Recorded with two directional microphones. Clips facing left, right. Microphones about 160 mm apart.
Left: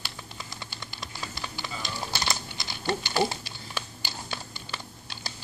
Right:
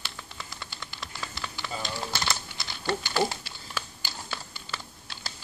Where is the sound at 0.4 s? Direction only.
20° left (ahead or behind).